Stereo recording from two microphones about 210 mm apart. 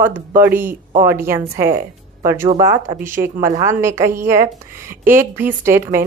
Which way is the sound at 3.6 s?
15° right (ahead or behind).